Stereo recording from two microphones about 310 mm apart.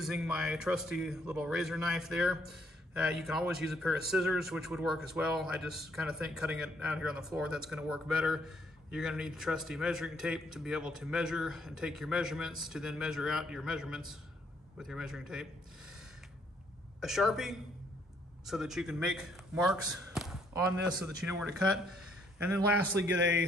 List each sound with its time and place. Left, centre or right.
0.0 s a man's voice: centre
17.0 s a man's voice: centre
23.0 s a man's voice: right